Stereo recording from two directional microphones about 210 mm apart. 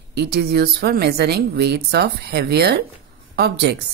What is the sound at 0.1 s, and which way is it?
A woman's voice, 50° right (ahead or behind).